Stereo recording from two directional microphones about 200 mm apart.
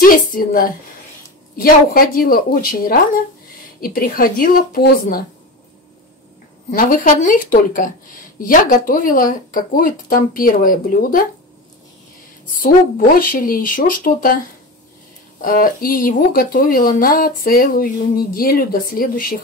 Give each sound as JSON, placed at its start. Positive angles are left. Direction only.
{"t": 0.0, "sound": "speech", "side_deg": 45}
{"t": 6.7, "sound": "speech", "side_deg": 45}
{"t": 12.6, "sound": "speech", "side_deg": 45}
{"t": 15.4, "sound": "speech", "side_deg": 45}